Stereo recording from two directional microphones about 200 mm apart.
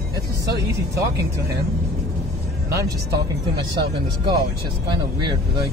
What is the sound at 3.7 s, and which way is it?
Speech, 20° right (ahead or behind).